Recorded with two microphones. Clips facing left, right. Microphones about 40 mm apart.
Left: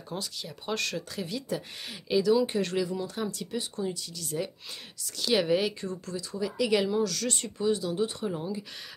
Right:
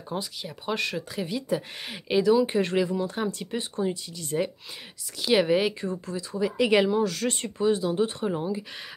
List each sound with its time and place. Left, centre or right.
0.2 s speech: centre
5.2 s speech: centre